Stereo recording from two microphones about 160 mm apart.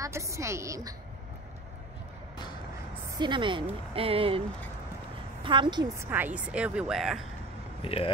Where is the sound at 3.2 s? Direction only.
30° right (ahead or behind).